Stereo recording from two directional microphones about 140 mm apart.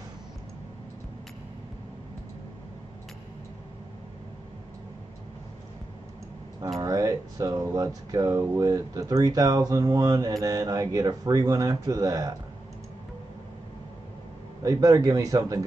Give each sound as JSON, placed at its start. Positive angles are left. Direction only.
{"t": 6.8, "sound": "speech", "side_deg": -25}
{"t": 14.6, "sound": "speech", "side_deg": -25}